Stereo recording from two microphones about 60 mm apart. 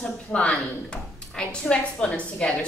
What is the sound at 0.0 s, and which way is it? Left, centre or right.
Speech, centre.